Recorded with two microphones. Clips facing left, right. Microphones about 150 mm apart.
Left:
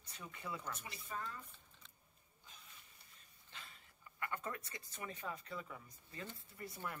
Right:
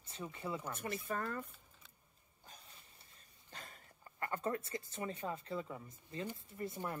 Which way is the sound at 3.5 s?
45° right (ahead or behind).